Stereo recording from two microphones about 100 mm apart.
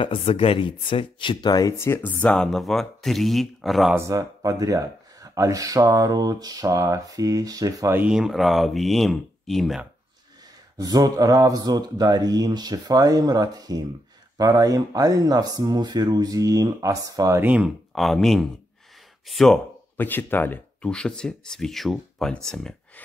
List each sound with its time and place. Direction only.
0.0 s speech: 65° left (ahead or behind); by 1.8 s 40° left (ahead or behind)
1.8 s speech: 25° left (ahead or behind)
2.3 s speech: 5° left (ahead or behind)
4.0 s speech: 35° right (ahead or behind)
8.1 s speech: 5° right (ahead or behind)
10.8 s speech: 40° right (ahead or behind)
17.4 s speech: 15° right (ahead or behind)
17.9 s speech: centre (ahead or behind)
20.0 s speech: 20° left (ahead or behind)
20.9 s speech: 10° left (ahead or behind)